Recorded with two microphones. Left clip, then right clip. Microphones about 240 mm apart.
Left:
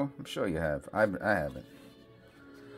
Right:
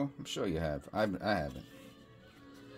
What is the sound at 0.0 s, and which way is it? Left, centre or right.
Speech, centre.